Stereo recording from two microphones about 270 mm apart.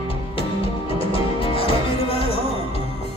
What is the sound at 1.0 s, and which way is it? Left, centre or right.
Music, centre.